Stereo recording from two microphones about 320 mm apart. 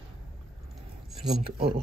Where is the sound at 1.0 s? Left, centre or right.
Centre.